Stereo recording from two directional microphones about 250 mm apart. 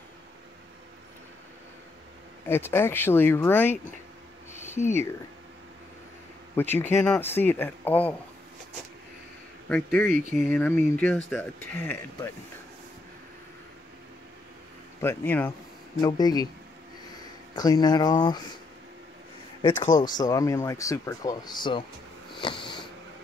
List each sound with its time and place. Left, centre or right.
2.4 s speech: centre
6.5 s speech: centre
9.7 s speech: centre
15.0 s speech: centre
19.6 s speech: centre
22.4 s sniff: centre